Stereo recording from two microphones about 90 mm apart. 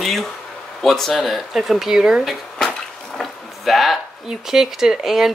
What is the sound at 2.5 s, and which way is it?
Speech, 10° left (ahead or behind).